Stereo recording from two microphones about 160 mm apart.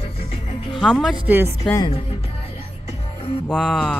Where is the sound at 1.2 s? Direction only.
15° right (ahead or behind).